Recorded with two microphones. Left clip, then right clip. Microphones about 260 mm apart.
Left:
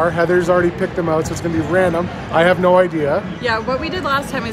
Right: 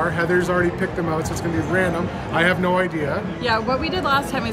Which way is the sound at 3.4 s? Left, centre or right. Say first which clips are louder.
Even; centre.